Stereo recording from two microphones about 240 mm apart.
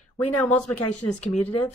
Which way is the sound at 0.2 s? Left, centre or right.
Left.